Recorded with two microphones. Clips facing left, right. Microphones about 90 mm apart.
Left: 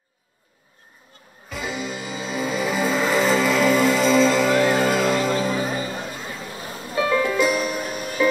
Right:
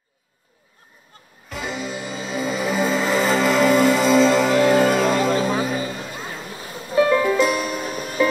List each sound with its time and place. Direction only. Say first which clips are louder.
1.5 s music: right 1 dB; centre (ahead or behind)
5.5 s music: right 2 dB; 35° right (ahead or behind)
7.1 s music: right 2 dB; 5° right (ahead or behind)